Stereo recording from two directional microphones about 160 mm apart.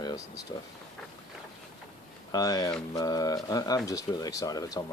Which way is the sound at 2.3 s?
25° left (ahead or behind).